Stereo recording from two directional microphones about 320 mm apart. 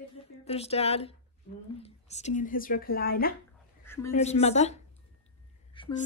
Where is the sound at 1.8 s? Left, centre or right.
Left.